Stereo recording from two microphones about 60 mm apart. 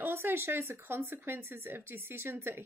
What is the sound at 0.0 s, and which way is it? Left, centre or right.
A woman's voice, right.